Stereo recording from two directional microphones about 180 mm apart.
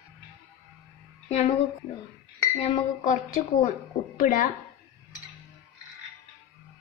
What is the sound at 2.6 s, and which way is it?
A woman's voice, 40° left (ahead or behind).